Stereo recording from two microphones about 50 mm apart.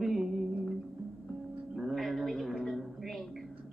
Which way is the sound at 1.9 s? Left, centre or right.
Centre.